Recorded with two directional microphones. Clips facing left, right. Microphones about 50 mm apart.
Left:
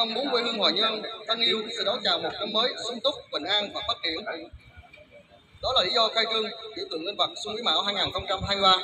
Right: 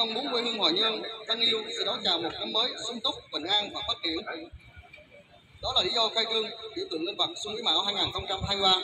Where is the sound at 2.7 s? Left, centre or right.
Centre.